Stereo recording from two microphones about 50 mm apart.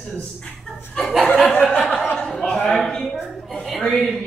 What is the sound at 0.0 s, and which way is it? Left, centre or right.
Speech, left.